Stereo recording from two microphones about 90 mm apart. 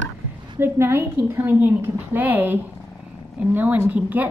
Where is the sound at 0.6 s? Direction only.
25° right (ahead or behind).